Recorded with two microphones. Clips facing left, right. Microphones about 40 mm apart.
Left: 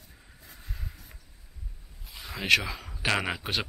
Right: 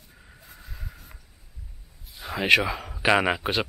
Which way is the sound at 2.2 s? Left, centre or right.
Centre.